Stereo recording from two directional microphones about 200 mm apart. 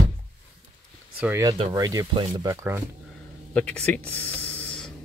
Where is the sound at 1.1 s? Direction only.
10° right (ahead or behind).